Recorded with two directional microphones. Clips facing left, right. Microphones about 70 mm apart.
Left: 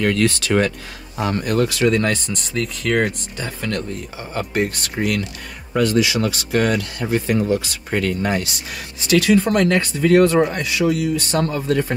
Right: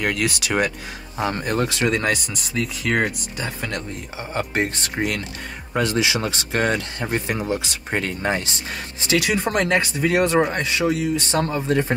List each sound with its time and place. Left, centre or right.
0.0 s speech: centre
10.5 s speech: right